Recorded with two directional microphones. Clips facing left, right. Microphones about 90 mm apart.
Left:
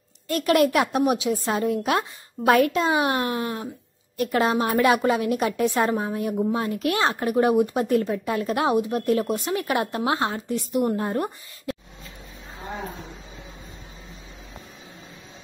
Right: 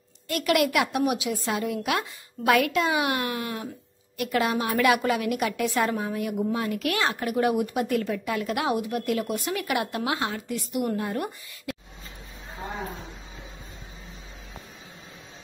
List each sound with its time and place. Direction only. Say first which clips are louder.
0.3 s a woman's voice: left 4 dB; 35° left (ahead or behind)